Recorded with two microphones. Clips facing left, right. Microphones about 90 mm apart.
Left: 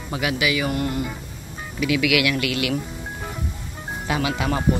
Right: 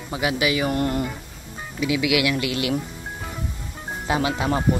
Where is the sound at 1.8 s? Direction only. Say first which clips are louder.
Left 1 dB; 25° right (ahead or behind).